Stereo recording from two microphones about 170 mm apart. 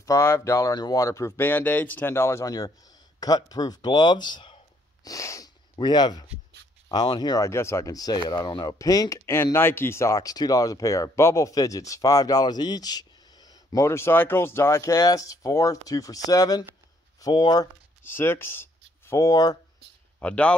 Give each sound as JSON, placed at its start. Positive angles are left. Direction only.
{"t": 0.0, "sound": "speech", "side_deg": 15}
{"t": 18.0, "sound": "speech", "side_deg": 15}
{"t": 20.2, "sound": "speech", "side_deg": 5}